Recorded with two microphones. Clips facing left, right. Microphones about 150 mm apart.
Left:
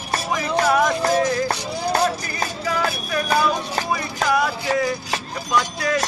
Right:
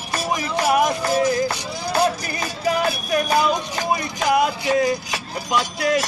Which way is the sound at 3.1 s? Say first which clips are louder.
Right 1 dB; 20° right (ahead or behind).